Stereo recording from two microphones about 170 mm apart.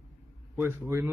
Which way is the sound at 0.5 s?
15° right (ahead or behind).